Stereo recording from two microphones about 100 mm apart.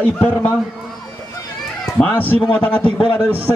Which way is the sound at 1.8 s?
15° left (ahead or behind).